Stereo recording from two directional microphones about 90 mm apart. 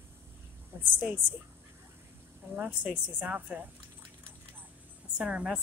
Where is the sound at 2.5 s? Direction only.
15° right (ahead or behind).